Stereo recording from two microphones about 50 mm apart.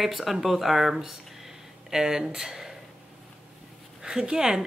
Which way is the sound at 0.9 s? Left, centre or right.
Centre.